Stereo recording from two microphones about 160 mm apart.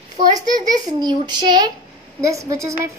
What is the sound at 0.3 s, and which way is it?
A woman's voice, 25° right (ahead or behind).